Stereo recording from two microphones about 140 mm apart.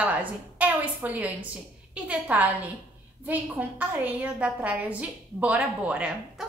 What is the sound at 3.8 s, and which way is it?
A woman's voice, 10° right (ahead or behind).